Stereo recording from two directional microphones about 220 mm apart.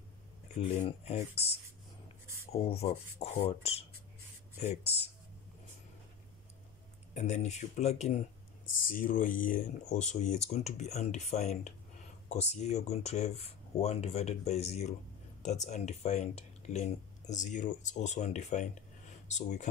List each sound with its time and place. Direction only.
0.6 s speech: 25° left (ahead or behind)
7.2 s speech: 30° left (ahead or behind)